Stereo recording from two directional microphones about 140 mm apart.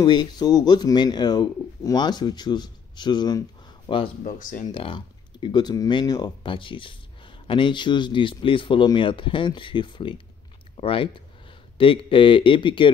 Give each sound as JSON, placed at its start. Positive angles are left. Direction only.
{"t": 0.0, "sound": "speech", "side_deg": 30}
{"t": 4.2, "sound": "speech", "side_deg": 70}
{"t": 4.7, "sound": "speech", "side_deg": 35}